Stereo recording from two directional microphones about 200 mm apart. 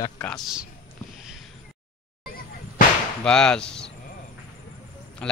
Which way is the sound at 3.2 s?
5° left (ahead or behind).